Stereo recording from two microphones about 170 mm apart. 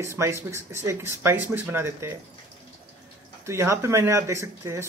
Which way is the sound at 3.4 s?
15° right (ahead or behind).